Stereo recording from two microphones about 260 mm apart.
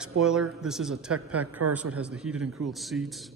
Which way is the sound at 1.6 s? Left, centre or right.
Right.